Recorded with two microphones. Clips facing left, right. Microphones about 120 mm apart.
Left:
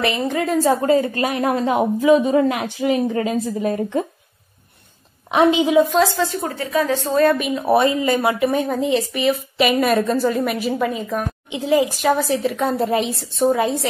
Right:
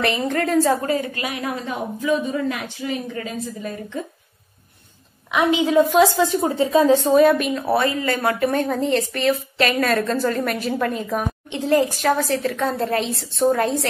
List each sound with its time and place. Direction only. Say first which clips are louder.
0.2 s a woman's voice: even; 5° left (ahead or behind)
0.7 s a woman's voice: left 4 dB; 25° left (ahead or behind)
1.1 s a woman's voice: left 7 dB; 40° left (ahead or behind)
1.4 s a woman's voice: left 11 dB; 70° left (ahead or behind)
5.3 s a woman's voice: left 4 dB; 25° left (ahead or behind)
5.8 s a woman's voice: right 2 dB; centre (ahead or behind)
6.1 s a woman's voice: right 4 dB; 20° right (ahead or behind)
7.3 s a woman's voice: even; centre (ahead or behind)
7.6 s a woman's voice: left 7 dB; 20° left (ahead or behind)